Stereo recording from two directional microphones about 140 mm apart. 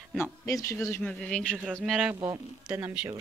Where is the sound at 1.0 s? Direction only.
5° left (ahead or behind).